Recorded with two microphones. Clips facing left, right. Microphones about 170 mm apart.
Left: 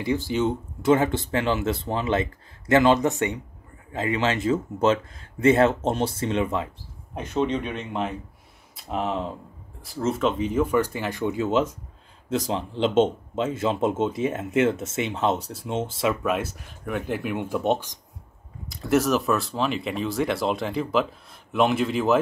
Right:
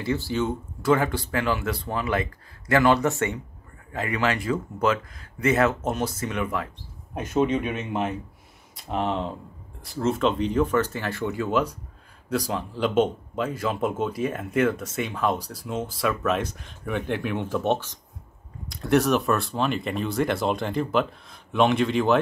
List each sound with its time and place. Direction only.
0.0 s speech: 15° left (ahead or behind)
7.2 s speech: 10° right (ahead or behind); by 16.3 s 20° left (ahead or behind)
16.3 s speech: 5° left (ahead or behind)
18.7 s speech: centre (ahead or behind)